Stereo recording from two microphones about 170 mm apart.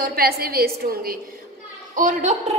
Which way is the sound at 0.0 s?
65° right (ahead or behind).